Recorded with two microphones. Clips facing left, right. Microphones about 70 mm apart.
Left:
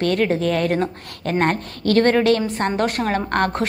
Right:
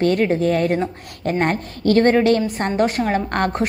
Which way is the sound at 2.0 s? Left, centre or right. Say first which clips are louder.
Right 1 dB; centre.